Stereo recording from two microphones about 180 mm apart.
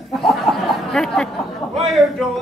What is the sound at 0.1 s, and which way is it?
Speech, centre (ahead or behind).